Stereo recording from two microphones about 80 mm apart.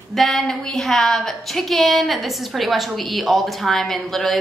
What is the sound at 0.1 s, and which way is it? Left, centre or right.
A woman's voice, centre.